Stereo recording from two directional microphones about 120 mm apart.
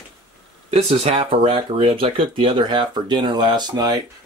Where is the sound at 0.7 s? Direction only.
55° right (ahead or behind); by 3.6 s 40° right (ahead or behind).